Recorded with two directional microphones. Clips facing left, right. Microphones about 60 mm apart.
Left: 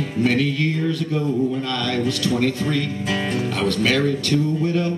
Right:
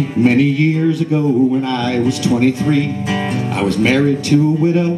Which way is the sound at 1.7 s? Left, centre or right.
Right.